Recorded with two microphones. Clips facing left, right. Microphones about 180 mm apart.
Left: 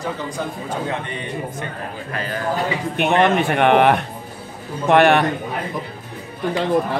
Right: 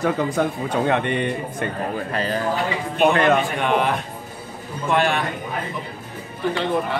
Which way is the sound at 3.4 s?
65° left (ahead or behind).